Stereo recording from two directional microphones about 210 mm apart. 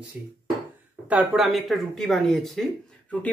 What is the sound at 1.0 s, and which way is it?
Speech, 5° right (ahead or behind).